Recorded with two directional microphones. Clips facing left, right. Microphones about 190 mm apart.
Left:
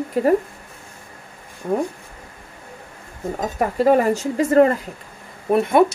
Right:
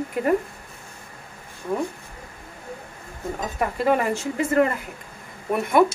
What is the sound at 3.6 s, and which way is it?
A woman's voice, 40° left (ahead or behind).